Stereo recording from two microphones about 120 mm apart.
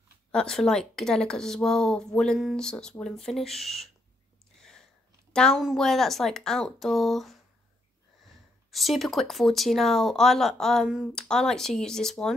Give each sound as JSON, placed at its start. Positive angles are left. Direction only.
{"t": 0.3, "sound": "speech", "side_deg": 5}
{"t": 4.6, "sound": "a sound", "side_deg": 5}
{"t": 5.3, "sound": "a woman's voice", "side_deg": 5}
{"t": 8.7, "sound": "speech", "side_deg": 0}